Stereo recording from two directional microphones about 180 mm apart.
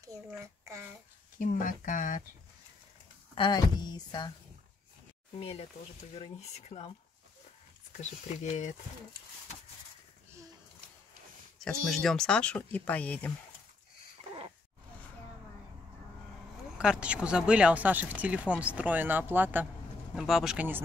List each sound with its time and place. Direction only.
0.4 s a child's voice: 15° right (ahead or behind)
1.4 s speech: 45° left (ahead or behind)
3.3 s speech: 25° left (ahead or behind)
5.4 s speech: 35° left (ahead or behind)
11.6 s speech: 5° left (ahead or behind)
16.7 s speech: 5° right (ahead or behind)